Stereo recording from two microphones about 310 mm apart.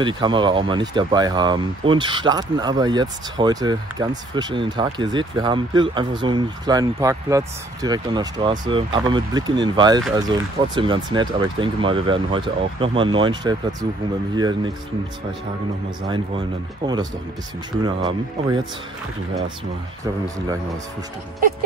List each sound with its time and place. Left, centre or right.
0.0 s speech: centre
16.1 s speech: centre